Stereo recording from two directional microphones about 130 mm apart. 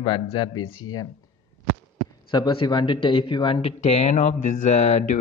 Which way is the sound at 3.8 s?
60° left (ahead or behind).